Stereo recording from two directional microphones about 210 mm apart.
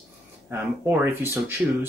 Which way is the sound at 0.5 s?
10° right (ahead or behind).